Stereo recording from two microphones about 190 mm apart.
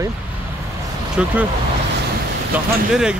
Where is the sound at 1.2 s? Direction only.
5° right (ahead or behind).